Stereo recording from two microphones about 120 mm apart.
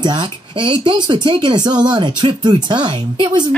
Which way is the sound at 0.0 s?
40° right (ahead or behind).